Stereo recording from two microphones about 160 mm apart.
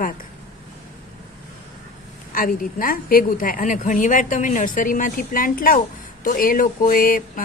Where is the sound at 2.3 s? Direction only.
60° left (ahead or behind).